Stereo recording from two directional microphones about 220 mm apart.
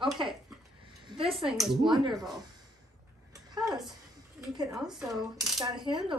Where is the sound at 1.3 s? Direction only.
Centre (ahead or behind).